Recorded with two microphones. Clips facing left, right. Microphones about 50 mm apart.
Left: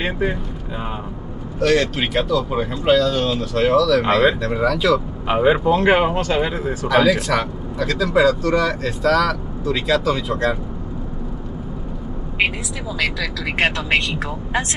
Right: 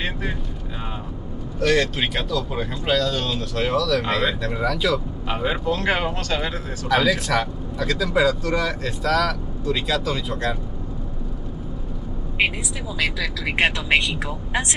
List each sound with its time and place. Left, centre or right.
0.0 s speech: centre
1.6 s speech: centre
4.0 s speech: centre
5.3 s speech: left
6.9 s speech: centre
13.0 s speech: centre